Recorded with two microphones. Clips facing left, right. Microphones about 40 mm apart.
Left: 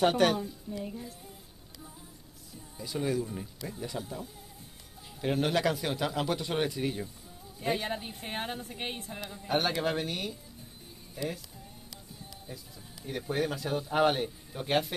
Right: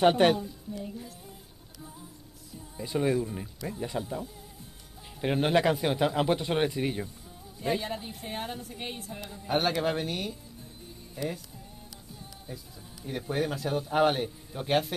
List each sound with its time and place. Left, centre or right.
0.0 s speech: right
0.7 s speech: centre
2.8 s speech: right
5.2 s speech: right
7.6 s a woman's voice: centre
9.8 s a man's voice: centre
12.5 s a man's voice: centre